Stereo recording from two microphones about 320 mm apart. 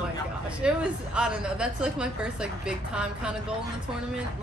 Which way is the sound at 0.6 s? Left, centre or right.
Centre.